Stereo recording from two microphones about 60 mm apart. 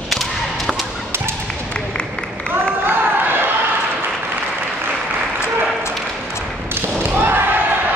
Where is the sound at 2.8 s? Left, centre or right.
Right.